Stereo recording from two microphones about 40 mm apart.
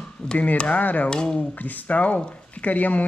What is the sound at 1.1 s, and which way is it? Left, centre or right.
Speech, left.